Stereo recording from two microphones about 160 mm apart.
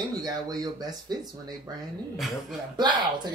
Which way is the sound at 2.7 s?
25° right (ahead or behind).